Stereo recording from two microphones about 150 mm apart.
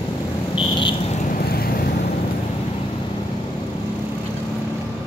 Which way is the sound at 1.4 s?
85° left.